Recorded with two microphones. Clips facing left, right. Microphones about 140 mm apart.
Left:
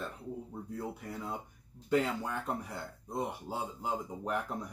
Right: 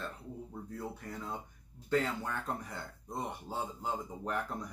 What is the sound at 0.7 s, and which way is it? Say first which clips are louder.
Speech: left 2 dB; 10° left (ahead or behind).